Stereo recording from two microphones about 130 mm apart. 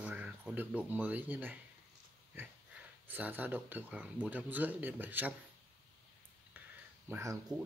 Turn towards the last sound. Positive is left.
turn(degrees=-20)  # may be behind; listen again after turning